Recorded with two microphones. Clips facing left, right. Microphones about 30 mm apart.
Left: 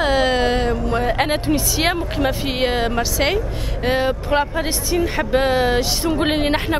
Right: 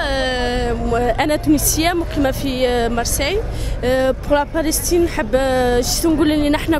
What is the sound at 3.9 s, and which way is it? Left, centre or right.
Speech, centre.